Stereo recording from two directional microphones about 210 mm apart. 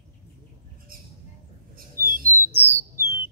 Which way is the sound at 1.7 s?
45° right (ahead or behind).